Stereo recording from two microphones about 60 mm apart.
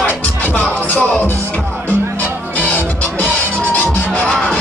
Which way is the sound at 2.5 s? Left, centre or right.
Left.